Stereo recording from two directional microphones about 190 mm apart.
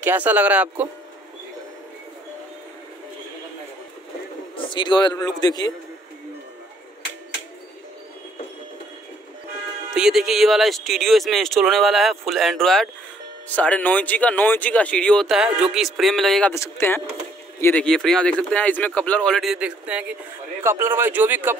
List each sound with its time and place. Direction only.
0.0 s speech: 10° right (ahead or behind)
4.6 s a man's voice: 25° left (ahead or behind)
9.9 s speech: 5° right (ahead or behind)
16.5 s speech: 15° left (ahead or behind); by 21.5 s 10° right (ahead or behind)